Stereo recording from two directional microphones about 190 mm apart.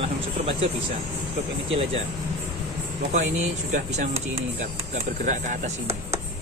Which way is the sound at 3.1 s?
40° right (ahead or behind).